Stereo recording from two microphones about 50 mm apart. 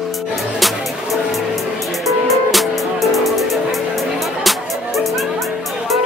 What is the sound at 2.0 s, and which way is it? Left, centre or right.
Music, centre.